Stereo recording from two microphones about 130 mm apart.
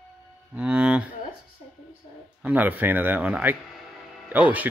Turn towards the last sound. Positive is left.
turn(degrees=-10)  # may be behind; listen again after turning